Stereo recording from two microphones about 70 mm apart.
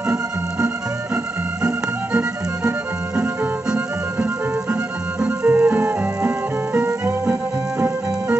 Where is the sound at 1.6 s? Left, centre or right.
Centre; by 7.9 s right.